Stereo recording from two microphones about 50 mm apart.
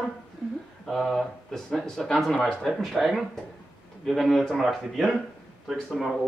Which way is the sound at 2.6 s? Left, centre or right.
Centre.